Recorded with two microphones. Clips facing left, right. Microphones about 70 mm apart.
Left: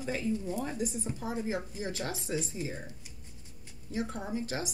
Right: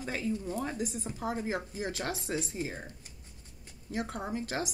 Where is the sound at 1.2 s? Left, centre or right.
Right.